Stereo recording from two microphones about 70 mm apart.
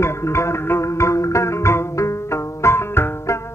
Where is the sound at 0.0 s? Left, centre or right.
Left.